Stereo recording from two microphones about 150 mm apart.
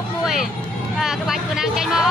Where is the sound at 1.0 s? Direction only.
5° right (ahead or behind).